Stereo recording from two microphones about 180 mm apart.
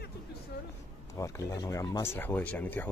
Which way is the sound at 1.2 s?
15° left (ahead or behind).